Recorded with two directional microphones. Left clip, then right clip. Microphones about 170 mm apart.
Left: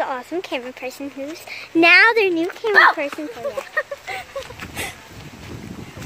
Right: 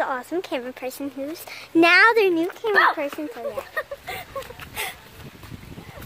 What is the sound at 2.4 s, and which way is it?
Speech, 5° left (ahead or behind).